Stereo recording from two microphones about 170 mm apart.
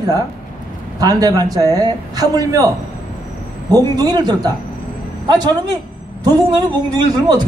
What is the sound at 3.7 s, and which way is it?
Speech, 25° right (ahead or behind).